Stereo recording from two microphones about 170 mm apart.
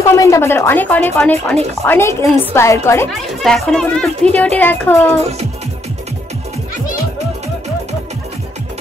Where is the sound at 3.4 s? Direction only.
Centre (ahead or behind).